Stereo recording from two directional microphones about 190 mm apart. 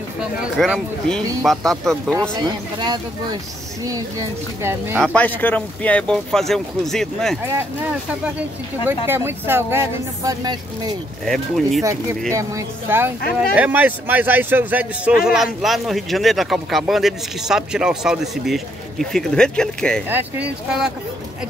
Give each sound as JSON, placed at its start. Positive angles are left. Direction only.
{"t": 0.2, "sound": "speech", "side_deg": 0}
{"t": 2.4, "sound": "speech", "side_deg": -20}
{"t": 5.0, "sound": "speech", "side_deg": 5}
{"t": 7.4, "sound": "speech", "side_deg": -10}
{"t": 11.2, "sound": "speech", "side_deg": 0}
{"t": 12.4, "sound": "speech", "side_deg": -15}
{"t": 20.1, "sound": "speech", "side_deg": -10}